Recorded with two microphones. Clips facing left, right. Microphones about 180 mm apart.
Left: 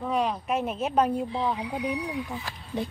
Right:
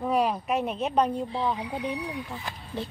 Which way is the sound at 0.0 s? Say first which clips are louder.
Right 2 dB; 10° right (ahead or behind).